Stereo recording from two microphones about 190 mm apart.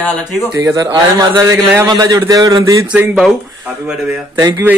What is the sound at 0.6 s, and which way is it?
A man's voice, 15° right (ahead or behind).